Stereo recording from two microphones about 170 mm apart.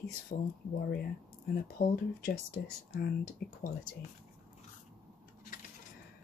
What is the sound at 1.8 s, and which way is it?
Speech, 60° left (ahead or behind).